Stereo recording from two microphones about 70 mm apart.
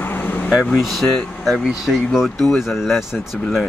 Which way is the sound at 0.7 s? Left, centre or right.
Centre.